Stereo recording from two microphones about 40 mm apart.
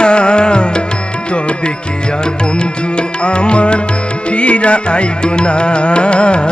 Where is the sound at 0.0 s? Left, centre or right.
Left.